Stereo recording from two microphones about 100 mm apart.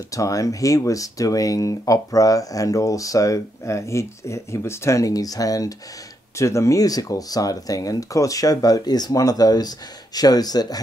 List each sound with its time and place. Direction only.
0.1 s speech: 35° left (ahead or behind)